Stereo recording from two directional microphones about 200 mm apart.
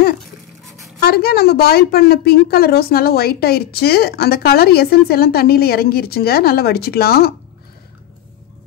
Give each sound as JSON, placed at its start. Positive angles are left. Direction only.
{"t": 1.0, "sound": "a woman's voice", "side_deg": 50}